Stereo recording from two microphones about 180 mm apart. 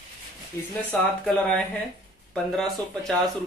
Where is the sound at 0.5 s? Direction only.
15° left (ahead or behind).